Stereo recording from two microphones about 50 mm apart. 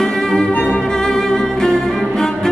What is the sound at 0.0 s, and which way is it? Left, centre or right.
Music, centre.